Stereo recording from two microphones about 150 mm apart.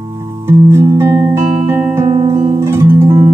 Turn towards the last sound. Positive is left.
turn(degrees=-15)  # may be behind; listen again after turning